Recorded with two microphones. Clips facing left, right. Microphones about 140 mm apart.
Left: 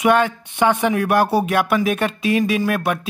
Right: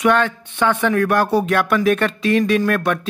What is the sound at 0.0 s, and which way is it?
Speech, 10° left (ahead or behind).